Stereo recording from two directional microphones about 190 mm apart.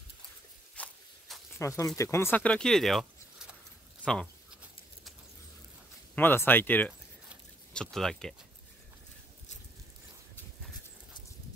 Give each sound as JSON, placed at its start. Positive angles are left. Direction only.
{"t": 0.8, "sound": "walk", "side_deg": 5}
{"t": 1.6, "sound": "speech", "side_deg": 15}
{"t": 6.1, "sound": "speech", "side_deg": 10}